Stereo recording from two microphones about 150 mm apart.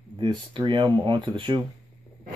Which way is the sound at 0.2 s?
35° right (ahead or behind).